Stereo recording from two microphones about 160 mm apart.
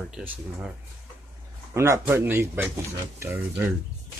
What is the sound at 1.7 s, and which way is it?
Speech, 15° right (ahead or behind).